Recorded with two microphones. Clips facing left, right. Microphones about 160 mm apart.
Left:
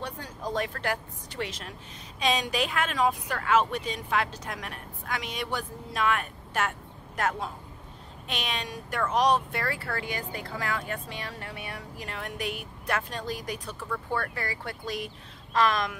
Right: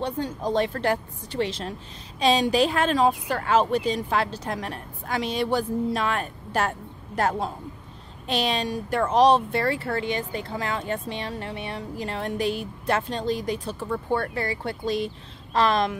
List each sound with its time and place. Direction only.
0.0 s speech: 25° right (ahead or behind)